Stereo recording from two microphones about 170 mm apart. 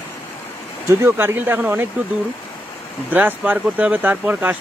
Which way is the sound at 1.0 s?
15° right (ahead or behind).